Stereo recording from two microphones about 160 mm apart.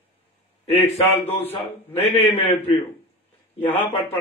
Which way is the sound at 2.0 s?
40° left (ahead or behind).